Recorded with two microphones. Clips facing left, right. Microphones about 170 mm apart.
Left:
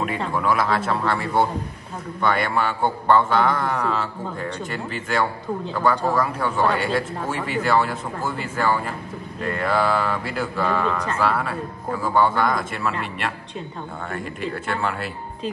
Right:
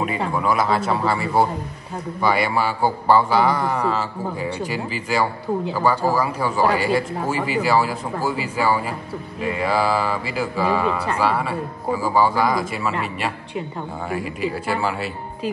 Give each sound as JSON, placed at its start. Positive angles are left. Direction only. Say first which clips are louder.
{"t": 0.3, "sound": "speech", "louder": "right 1 dB", "side_deg": 0}